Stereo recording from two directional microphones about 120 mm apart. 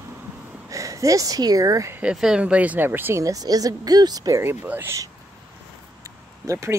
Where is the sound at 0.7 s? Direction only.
25° right (ahead or behind).